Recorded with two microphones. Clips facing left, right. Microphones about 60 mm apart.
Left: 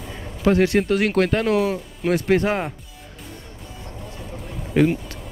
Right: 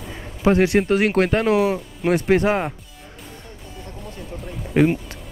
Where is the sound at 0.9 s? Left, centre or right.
Right.